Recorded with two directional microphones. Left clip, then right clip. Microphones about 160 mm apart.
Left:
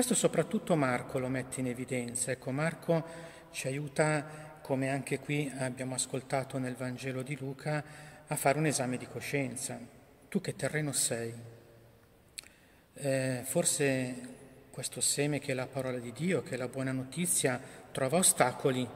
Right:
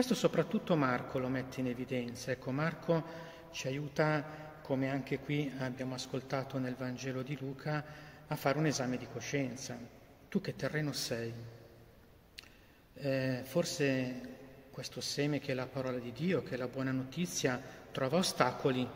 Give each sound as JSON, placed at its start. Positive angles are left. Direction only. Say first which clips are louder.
{"t": 0.0, "sound": "a man's voice", "louder": "left 2 dB", "side_deg": 25}
{"t": 13.0, "sound": "a man's voice", "louder": "left 3 dB", "side_deg": 20}